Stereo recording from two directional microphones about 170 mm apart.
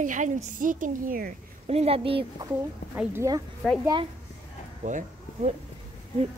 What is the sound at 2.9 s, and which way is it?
Speech, 15° right (ahead or behind).